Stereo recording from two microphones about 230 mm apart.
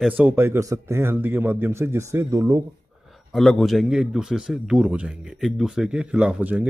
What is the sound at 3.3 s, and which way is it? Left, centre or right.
A man's voice, centre.